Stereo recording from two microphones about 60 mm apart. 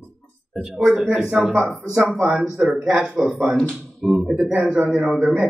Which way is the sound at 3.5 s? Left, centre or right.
Centre.